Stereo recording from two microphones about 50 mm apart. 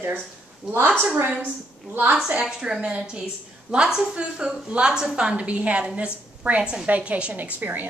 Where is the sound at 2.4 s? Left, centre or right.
Centre.